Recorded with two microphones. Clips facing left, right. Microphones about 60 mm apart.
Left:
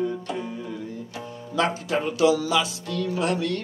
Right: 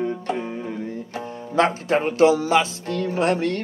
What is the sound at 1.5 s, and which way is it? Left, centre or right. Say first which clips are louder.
Speech: right 5 dB; right.